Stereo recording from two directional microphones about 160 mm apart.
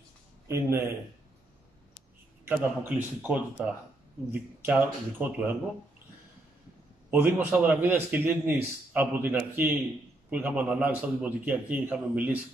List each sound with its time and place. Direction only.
0.5 s a man's voice: 15° right (ahead or behind)
2.4 s a man's voice: 10° right (ahead or behind)
7.1 s a man's voice: 10° right (ahead or behind)